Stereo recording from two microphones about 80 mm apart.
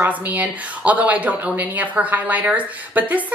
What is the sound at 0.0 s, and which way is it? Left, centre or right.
Speech, right.